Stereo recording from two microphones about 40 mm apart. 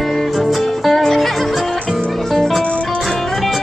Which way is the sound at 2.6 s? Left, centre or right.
Left.